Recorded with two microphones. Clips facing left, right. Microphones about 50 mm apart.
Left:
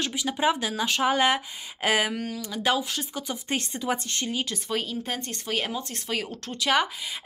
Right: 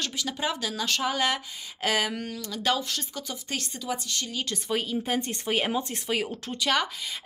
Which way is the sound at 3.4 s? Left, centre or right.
Left.